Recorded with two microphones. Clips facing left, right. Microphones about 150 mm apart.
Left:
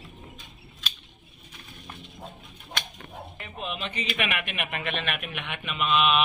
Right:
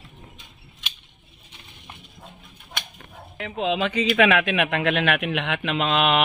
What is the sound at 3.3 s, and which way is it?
A man's voice, 90° right.